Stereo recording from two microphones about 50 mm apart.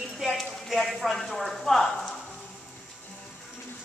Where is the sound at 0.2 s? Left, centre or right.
Centre.